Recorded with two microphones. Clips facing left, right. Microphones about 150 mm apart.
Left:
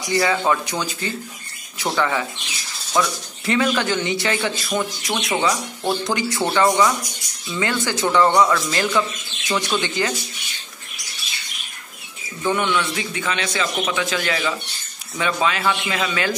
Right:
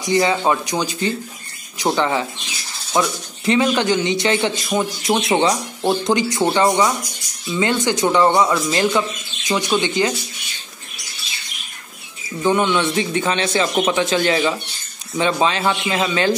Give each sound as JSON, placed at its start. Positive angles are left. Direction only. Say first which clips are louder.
{"t": 0.1, "sound": "speech", "louder": "right 2 dB", "side_deg": -20}
{"t": 1.9, "sound": "speech", "louder": "right 3 dB", "side_deg": -25}
{"t": 12.4, "sound": "speech", "louder": "right 4 dB", "side_deg": -25}